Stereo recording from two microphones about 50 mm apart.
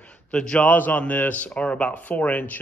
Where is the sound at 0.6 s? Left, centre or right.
Left.